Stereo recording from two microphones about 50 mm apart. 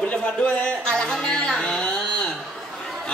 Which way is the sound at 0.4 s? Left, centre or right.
Left.